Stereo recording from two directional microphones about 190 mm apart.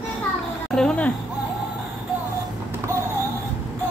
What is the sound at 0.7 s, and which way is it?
Speech, 5° left (ahead or behind).